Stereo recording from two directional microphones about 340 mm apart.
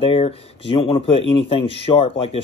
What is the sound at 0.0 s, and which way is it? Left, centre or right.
Speech, centre.